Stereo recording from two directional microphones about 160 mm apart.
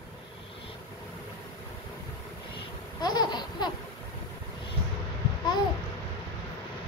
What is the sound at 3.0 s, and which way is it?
Laughter, 25° left (ahead or behind).